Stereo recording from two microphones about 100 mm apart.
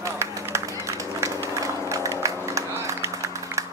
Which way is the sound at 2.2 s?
30° right (ahead or behind).